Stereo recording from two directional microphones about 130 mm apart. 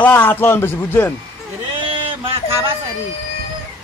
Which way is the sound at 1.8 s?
40° right (ahead or behind).